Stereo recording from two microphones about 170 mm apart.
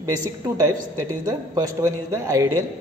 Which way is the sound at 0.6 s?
20° right (ahead or behind).